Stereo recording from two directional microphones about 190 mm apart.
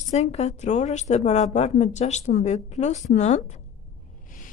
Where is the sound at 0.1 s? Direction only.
35° left (ahead or behind).